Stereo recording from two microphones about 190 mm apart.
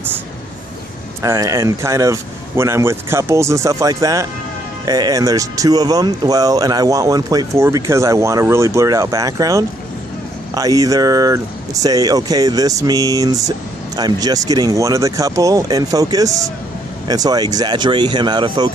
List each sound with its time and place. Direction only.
1.2 s speech: 15° right (ahead or behind)